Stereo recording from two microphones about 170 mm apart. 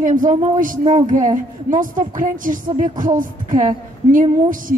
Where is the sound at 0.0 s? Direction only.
50° right (ahead or behind).